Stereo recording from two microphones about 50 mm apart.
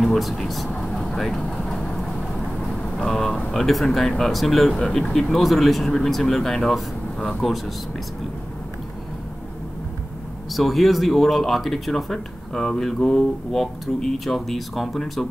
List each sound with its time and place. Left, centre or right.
0.0 s speech: centre
0.7 s speech: centre
0.9 s vehicle: centre
1.4 s vehicle: centre
3.5 s speech: centre
7.4 s speech: centre
10.5 s speech: centre